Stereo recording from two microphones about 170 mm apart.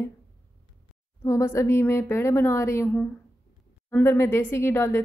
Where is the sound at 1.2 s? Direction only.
15° left (ahead or behind).